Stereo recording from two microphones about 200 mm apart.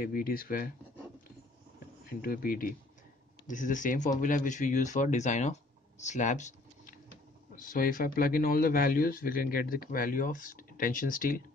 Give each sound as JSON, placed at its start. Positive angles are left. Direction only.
{"t": 0.0, "sound": "speech", "side_deg": 45}
{"t": 2.2, "sound": "speech", "side_deg": 45}